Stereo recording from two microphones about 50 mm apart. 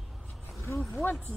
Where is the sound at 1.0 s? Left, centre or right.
Left.